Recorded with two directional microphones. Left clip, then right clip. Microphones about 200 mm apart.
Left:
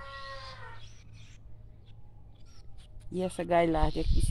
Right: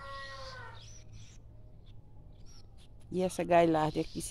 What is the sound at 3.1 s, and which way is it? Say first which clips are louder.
Speech: right 1 dB; 5° right (ahead or behind).